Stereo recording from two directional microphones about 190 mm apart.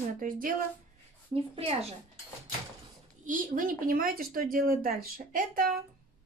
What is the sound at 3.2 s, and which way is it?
Speech, 45° right (ahead or behind).